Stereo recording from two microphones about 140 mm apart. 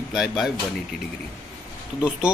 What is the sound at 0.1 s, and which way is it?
Speech, 5° right (ahead or behind).